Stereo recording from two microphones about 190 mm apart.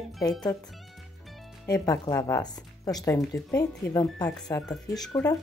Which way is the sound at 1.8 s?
20° left (ahead or behind).